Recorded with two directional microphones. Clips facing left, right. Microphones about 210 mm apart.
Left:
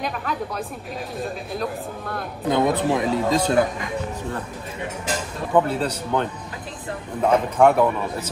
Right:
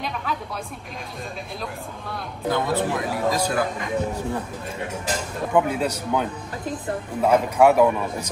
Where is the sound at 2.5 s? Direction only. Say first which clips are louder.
Left 4 dB; 20° left (ahead or behind).